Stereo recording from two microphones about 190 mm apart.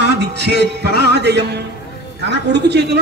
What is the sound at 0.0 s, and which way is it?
A woman's voice, 65° right (ahead or behind).